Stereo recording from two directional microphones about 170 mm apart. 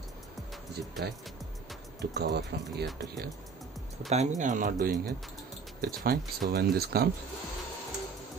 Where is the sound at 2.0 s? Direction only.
80° right.